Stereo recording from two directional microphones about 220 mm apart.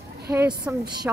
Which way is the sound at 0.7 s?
10° right (ahead or behind).